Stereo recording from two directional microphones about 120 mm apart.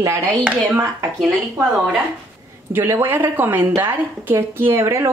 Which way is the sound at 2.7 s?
20° right (ahead or behind).